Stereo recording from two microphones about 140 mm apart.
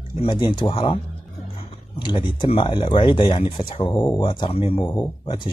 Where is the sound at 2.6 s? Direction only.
35° left (ahead or behind).